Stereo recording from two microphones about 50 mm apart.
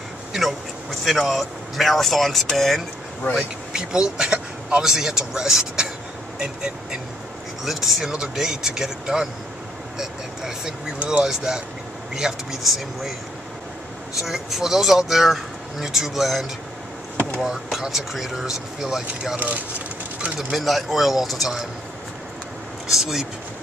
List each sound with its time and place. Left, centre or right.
0.3 s duck: centre
1.0 s speech: centre
3.3 s speech: centre
7.6 s speech: centre
14.1 s speech: centre
19.3 s speech: right
20.5 s speech: centre
22.8 s speech: centre